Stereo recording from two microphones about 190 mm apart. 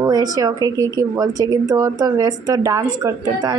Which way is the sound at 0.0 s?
20° right (ahead or behind).